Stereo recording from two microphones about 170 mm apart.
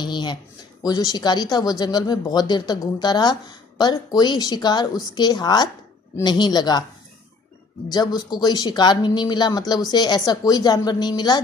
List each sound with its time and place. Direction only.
0.0 s a sound: 25° left (ahead or behind)
0.8 s speech: 25° left (ahead or behind)
7.9 s speech: 25° left (ahead or behind)